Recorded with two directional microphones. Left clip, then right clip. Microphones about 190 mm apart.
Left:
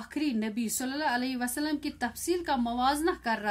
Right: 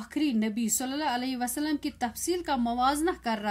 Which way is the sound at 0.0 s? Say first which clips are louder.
Right 3 dB; 15° right (ahead or behind).